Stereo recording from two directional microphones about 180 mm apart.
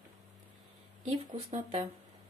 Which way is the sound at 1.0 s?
30° right (ahead or behind).